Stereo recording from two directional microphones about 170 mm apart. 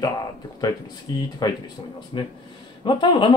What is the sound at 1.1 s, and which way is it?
Speech, 25° left (ahead or behind).